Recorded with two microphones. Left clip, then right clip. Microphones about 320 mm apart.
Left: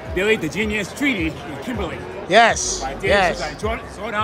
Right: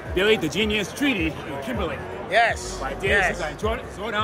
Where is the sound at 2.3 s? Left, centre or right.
Centre.